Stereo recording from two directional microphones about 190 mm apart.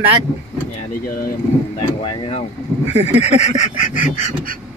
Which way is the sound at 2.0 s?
25° left (ahead or behind).